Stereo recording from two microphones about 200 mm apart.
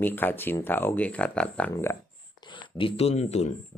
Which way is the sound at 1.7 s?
15° left (ahead or behind).